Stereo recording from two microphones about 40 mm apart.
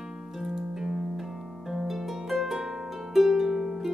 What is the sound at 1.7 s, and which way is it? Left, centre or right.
Harp, centre.